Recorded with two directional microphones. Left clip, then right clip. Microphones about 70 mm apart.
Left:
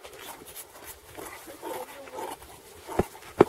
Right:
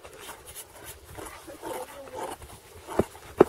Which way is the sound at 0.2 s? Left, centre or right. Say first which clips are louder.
Even; centre.